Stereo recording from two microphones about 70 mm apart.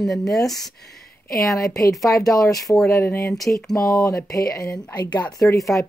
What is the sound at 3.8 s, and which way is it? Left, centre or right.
Speech, left.